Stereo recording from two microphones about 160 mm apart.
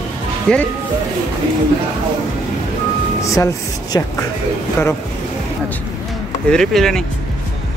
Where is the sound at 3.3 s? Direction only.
20° left (ahead or behind).